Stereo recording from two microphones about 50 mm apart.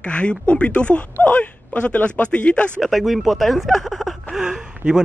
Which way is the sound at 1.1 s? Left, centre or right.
Left.